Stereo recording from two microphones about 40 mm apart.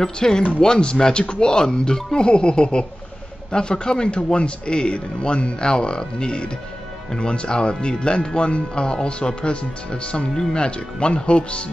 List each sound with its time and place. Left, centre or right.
0.0 s speech: centre